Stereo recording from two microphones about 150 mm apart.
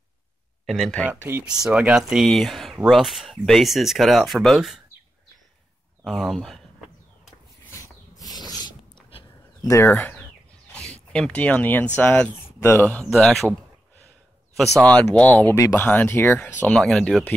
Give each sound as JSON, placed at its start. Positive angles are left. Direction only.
{"t": 0.7, "sound": "speech", "side_deg": 0}
{"t": 1.0, "sound": "speech", "side_deg": -15}
{"t": 6.0, "sound": "speech", "side_deg": 0}
{"t": 7.7, "sound": "a sound", "side_deg": 20}
{"t": 9.6, "sound": "speech", "side_deg": 20}
{"t": 9.8, "sound": "speech", "side_deg": 10}
{"t": 14.8, "sound": "speech", "side_deg": 10}